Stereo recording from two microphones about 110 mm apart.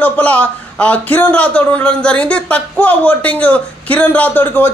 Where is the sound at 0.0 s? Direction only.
15° left (ahead or behind).